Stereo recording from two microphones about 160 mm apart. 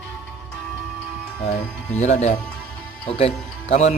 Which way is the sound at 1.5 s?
45° left (ahead or behind).